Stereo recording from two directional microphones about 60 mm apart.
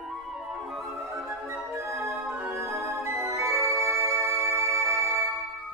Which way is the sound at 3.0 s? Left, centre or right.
Right.